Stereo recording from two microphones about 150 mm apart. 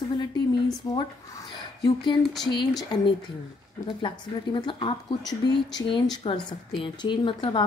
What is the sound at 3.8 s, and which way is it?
Speech, 30° left (ahead or behind).